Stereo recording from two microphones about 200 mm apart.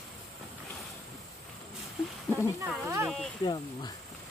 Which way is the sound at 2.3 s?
5° right (ahead or behind).